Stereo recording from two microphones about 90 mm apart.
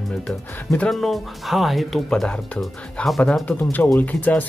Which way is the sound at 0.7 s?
5° left (ahead or behind).